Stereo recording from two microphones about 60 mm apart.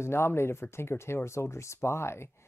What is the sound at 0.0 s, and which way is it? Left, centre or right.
Speech, left.